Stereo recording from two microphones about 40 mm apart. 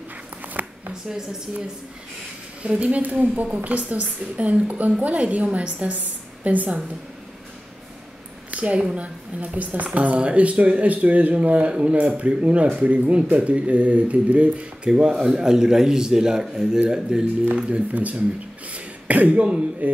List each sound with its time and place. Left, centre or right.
2.6 s a woman's voice: right
8.5 s a woman's voice: right
9.0 s a woman's voice: right
14.9 s a man's voice: centre
17.6 s speech: right